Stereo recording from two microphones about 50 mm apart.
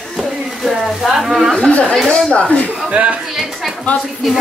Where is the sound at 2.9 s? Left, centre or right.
Right.